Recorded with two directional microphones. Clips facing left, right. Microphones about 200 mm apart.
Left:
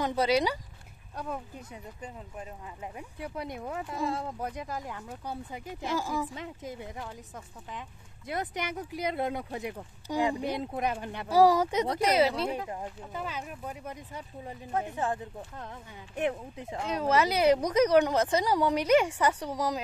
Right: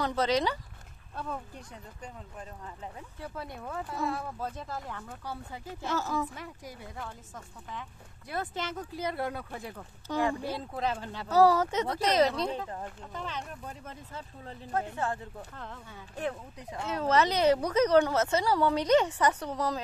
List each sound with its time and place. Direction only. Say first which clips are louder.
0.0 s speech: left 2 dB; 10° left (ahead or behind)
8.3 s speech: left 1 dB; 15° left (ahead or behind)
16.9 s speech: even; 10° left (ahead or behind)